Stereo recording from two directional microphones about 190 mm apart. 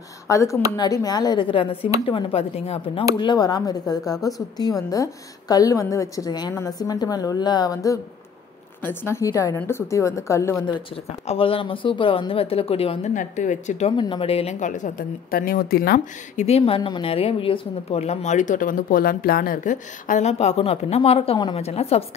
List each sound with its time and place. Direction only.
0.3 s a woman's voice: 15° left (ahead or behind)
11.2 s a woman's voice: 30° left (ahead or behind)
13.9 s a woman's voice: 25° left (ahead or behind); by 16.4 s 50° left (ahead or behind)
16.4 s a woman's voice: 30° left (ahead or behind)